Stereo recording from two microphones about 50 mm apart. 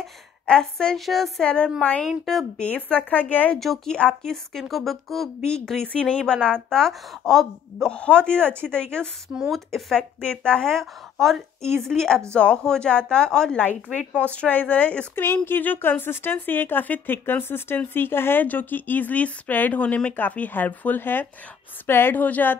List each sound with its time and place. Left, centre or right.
0.5 s a woman's voice: centre
1.4 s speech: left
2.2 s a woman's voice: centre
2.6 s speech: left
3.5 s a woman's voice: centre
5.9 s a woman's voice: left
7.9 s speech: centre
9.5 s a woman's voice: centre
9.9 s a woman's voice: left
14.2 s speech: left
15.1 s a woman's voice: left
18.4 s speech: left